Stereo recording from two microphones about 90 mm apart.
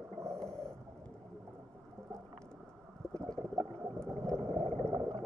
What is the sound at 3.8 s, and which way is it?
Whale vocalization, 10° left (ahead or behind).